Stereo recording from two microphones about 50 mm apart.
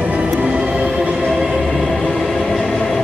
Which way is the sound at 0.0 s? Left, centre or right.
Right.